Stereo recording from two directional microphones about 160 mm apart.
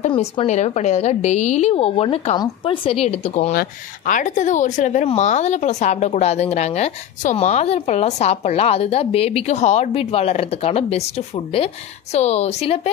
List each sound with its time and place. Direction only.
0.1 s a woman's voice: 35° left (ahead or behind)
0.5 s a woman's voice: 45° left (ahead or behind)
3.5 s speech: 55° left (ahead or behind); by 12.9 s 40° left (ahead or behind)